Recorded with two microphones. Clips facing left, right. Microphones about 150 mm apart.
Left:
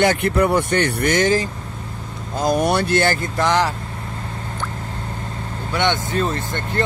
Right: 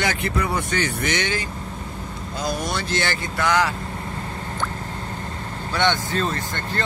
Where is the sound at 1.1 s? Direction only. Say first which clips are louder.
Left 9 dB; 40° left (ahead or behind).